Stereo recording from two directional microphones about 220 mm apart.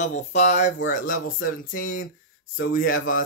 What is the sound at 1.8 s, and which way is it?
Speech, 60° left (ahead or behind).